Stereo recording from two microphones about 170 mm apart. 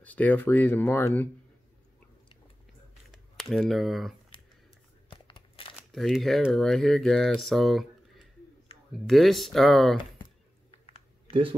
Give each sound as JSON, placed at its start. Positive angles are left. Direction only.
{"t": 0.0, "sound": "speech", "side_deg": 10}
{"t": 3.1, "sound": "a sound", "side_deg": 0}
{"t": 5.1, "sound": "crumpling", "side_deg": 30}
{"t": 5.8, "sound": "speech", "side_deg": 0}
{"t": 8.9, "sound": "speech", "side_deg": 0}
{"t": 11.2, "sound": "speech", "side_deg": -30}